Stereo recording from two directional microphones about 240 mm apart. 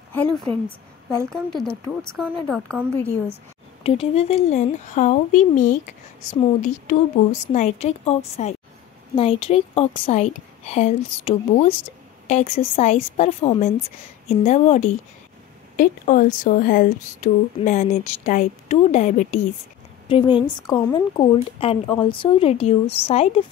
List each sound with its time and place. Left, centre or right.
0.1 s a woman's voice: centre
3.8 s a woman's voice: left